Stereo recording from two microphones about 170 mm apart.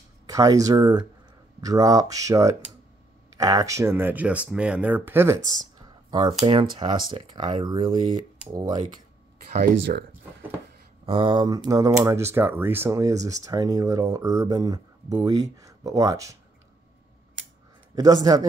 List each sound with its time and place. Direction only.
0.3 s speech: 20° right (ahead or behind)
6.0 s a sound: 25° right (ahead or behind)
6.4 s speech: 30° right (ahead or behind)
9.5 s speech: 75° right (ahead or behind)
11.1 s speech: 30° right (ahead or behind)
17.9 s speech: 20° right (ahead or behind)